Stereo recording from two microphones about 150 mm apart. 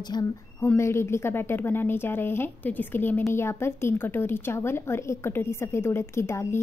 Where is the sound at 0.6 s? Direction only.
15° left (ahead or behind).